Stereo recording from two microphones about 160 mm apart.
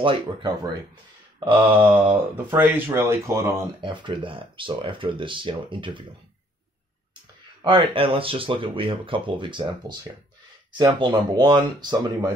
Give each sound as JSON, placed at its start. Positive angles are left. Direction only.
{"t": 0.0, "sound": "speech", "side_deg": -35}
{"t": 1.8, "sound": "mantra", "side_deg": -10}
{"t": 2.1, "sound": "speech", "side_deg": -10}
{"t": 7.6, "sound": "speech", "side_deg": -30}